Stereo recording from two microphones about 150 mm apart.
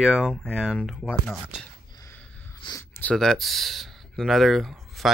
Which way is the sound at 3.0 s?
5° left (ahead or behind).